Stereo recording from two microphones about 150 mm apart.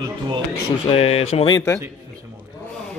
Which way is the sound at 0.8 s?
40° left (ahead or behind).